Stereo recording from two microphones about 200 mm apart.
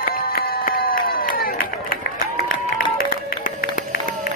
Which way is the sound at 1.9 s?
45° left (ahead or behind).